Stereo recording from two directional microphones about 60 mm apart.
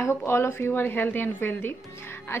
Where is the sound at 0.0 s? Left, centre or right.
Left.